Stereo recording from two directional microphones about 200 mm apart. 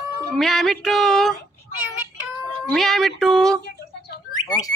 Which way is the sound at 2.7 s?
Centre (ahead or behind).